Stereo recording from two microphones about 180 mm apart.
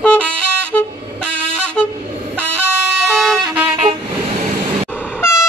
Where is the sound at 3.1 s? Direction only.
Centre (ahead or behind).